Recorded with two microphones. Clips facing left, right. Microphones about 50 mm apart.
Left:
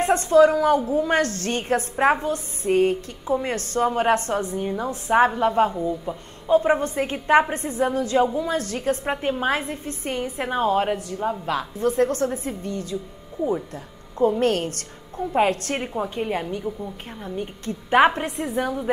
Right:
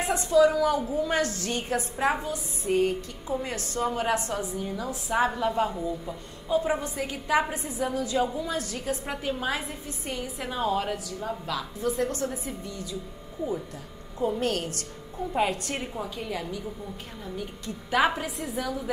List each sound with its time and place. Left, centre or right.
0.0 s a woman's voice: left
4.6 s a woman's voice: left
5.7 s a woman's voice: centre
6.4 s a woman's voice: left
14.1 s a woman's voice: left